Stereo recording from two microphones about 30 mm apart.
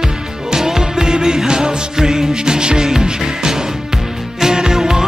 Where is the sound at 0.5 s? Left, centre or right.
Centre.